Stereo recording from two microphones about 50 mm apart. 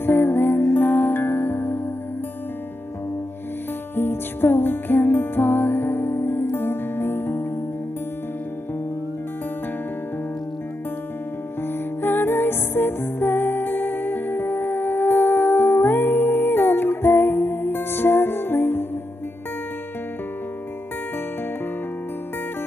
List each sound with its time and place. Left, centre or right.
0.0 s music: left
3.9 s music: left
12.0 s music: left